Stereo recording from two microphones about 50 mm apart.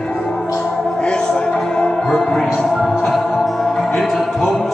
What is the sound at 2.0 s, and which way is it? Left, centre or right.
Music, centre.